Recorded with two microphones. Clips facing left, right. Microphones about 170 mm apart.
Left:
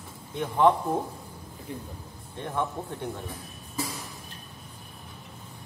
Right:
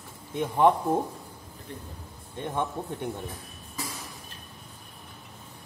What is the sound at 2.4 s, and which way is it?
Speech, 20° right (ahead or behind).